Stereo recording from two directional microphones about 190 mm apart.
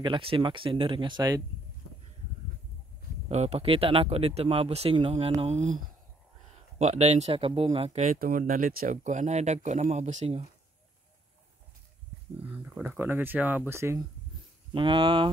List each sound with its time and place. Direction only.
0.0 s speech: 25° right (ahead or behind)
3.3 s speech: 35° right (ahead or behind)
6.8 s speech: 35° right (ahead or behind)
12.4 s speech: 10° right (ahead or behind)
14.7 s speech: 25° right (ahead or behind)